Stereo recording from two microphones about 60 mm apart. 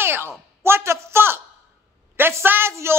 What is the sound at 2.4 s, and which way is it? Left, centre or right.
Speech, right.